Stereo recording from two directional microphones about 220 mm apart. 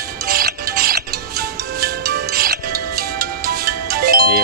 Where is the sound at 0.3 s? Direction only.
45° right (ahead or behind).